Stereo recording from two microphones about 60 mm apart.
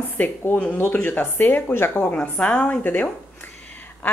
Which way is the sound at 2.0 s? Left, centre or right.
Centre.